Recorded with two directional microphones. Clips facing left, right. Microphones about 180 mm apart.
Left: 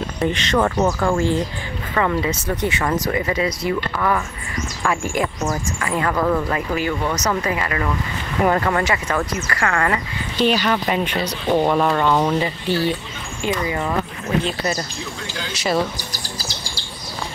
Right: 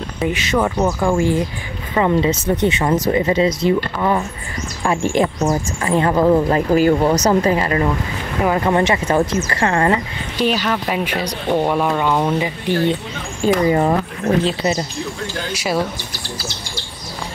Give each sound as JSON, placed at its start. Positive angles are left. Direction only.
{"t": 0.2, "sound": "speech", "side_deg": -10}
{"t": 8.5, "sound": "speech", "side_deg": -20}
{"t": 10.3, "sound": "speech", "side_deg": -5}
{"t": 13.6, "sound": "speech", "side_deg": -40}
{"t": 14.4, "sound": "speech", "side_deg": -25}
{"t": 15.5, "sound": "speech", "side_deg": -10}
{"t": 16.0, "sound": "bird", "side_deg": 40}